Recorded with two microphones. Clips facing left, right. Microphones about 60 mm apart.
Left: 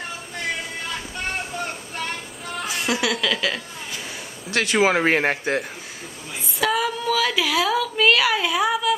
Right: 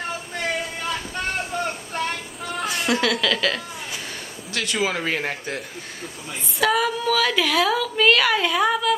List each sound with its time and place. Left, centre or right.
2.5 s speech: centre
4.5 s speech: left
6.6 s speech: centre